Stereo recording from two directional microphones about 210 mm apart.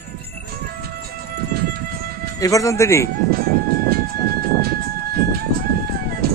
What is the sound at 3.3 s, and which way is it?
Music, 45° right (ahead or behind).